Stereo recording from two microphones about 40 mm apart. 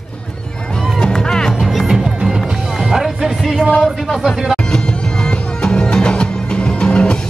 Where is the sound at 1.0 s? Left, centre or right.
Centre.